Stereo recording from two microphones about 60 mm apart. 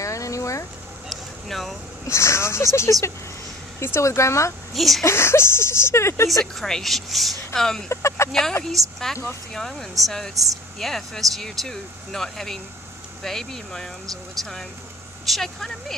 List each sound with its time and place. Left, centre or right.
0.0 s a sound: left
1.0 s vehicle: centre
2.0 s speech: left
4.7 s speech: centre
5.0 s speech: left
6.4 s speech: centre
7.9 s speech: left
8.3 s speech: centre